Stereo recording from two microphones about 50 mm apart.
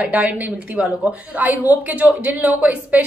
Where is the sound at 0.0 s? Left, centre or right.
Right.